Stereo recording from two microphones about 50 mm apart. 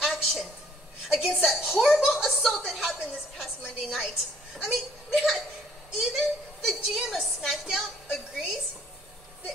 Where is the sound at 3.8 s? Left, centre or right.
Centre.